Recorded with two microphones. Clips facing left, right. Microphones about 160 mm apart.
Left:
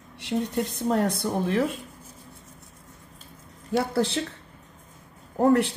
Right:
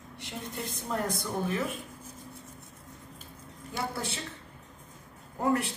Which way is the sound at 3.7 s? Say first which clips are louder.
Left 10 dB; 75° left (ahead or behind).